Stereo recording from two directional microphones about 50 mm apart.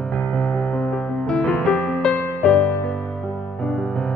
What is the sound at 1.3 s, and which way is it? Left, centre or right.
Music, centre.